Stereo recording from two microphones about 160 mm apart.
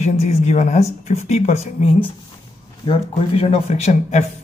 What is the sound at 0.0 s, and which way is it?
Speech, 45° left (ahead or behind).